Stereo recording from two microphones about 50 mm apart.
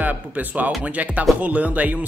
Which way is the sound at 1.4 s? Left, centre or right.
Right.